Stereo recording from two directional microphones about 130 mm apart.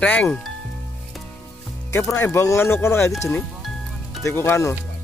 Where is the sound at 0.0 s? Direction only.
10° left (ahead or behind).